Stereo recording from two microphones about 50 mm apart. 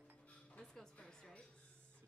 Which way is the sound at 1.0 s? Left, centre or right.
Centre.